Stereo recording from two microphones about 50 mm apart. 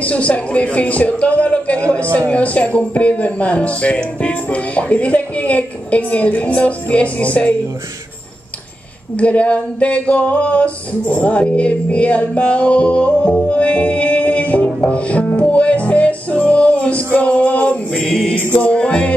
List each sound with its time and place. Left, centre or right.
0.0 s speech: left
9.1 s speech: left
14.9 s music: left
18.0 s mantra: centre
18.5 s music: left
18.8 s speech: left